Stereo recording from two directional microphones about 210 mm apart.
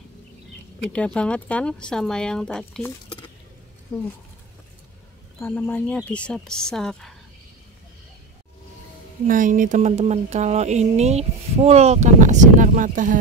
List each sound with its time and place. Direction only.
0.9 s speech: 5° left (ahead or behind)
5.4 s speech: 10° left (ahead or behind)
9.3 s speech: 40° right (ahead or behind)